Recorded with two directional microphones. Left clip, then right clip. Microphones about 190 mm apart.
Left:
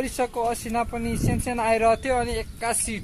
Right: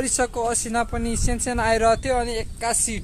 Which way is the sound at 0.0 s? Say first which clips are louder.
Right 2 dB; 15° right (ahead or behind).